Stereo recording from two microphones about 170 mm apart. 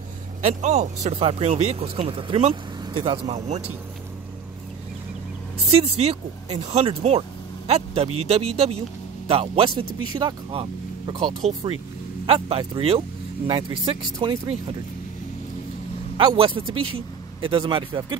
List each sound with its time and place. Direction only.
0.4 s speech: 40° right (ahead or behind)
5.7 s speech: 40° right (ahead or behind)
16.2 s speech: 30° right (ahead or behind)